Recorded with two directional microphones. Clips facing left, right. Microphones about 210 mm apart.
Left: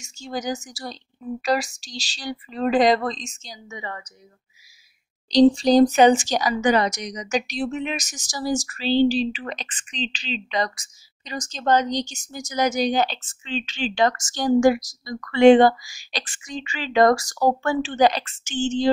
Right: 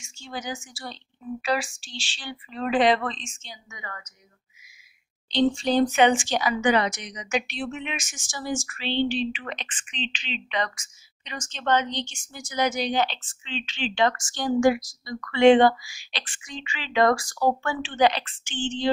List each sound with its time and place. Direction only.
0.0 s speech: 40° left (ahead or behind)
5.3 s speech: 35° left (ahead or behind)